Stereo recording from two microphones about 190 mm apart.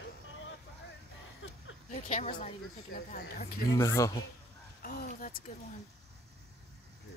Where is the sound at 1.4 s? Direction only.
90° left.